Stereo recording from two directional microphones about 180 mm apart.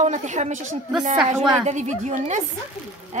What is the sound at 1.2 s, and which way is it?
Speech, 5° right (ahead or behind).